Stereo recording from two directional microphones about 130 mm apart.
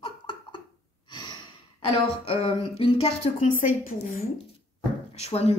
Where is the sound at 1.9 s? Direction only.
50° left (ahead or behind).